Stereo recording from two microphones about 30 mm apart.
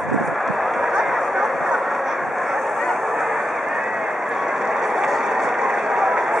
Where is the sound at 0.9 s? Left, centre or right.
Centre.